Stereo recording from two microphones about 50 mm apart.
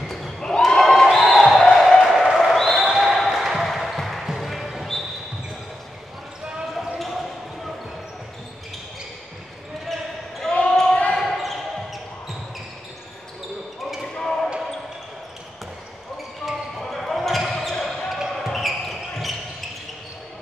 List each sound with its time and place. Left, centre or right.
0.1 s a sound: centre
2.3 s basketball bounce: centre
3.5 s music: centre
6.4 s basketball bounce: centre
7.0 s basketball bounce: centre
10.5 s basketball bounce: centre
11.1 s basketball bounce: centre
14.1 s basketball bounce: centre
16.4 s basketball bounce: centre